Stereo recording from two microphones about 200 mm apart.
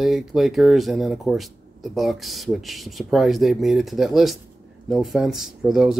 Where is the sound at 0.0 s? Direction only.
Centre (ahead or behind).